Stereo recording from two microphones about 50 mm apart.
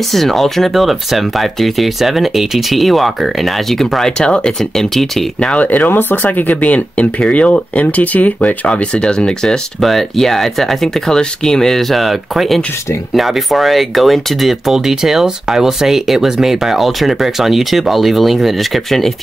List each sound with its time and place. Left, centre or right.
0.1 s speech: centre
4.6 s speech: centre
5.4 s speech: left
5.9 s speech: left; by 9.6 s centre
9.8 s speech: centre